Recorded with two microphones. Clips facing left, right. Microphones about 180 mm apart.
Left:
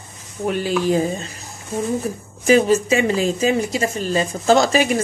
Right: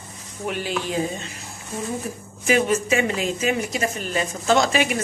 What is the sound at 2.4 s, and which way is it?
Speech, 35° left (ahead or behind).